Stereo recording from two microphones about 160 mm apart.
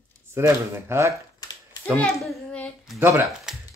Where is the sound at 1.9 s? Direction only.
5° left (ahead or behind).